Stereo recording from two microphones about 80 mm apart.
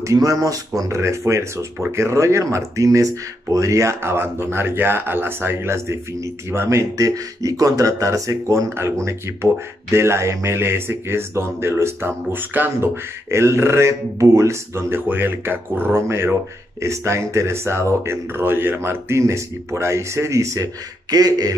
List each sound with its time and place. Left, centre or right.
0.0 s speech: right